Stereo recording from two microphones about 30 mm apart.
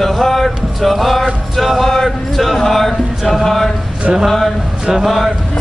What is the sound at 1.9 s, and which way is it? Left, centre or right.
Chant, centre.